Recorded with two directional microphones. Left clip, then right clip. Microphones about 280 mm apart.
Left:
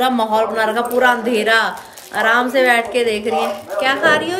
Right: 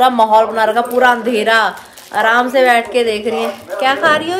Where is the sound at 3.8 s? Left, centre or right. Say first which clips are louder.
Right 2 dB; centre.